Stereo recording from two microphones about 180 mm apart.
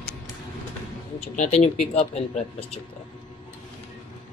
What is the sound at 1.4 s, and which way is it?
Speech, 40° left (ahead or behind).